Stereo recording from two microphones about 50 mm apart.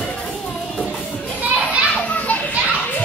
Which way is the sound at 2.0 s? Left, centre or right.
Left.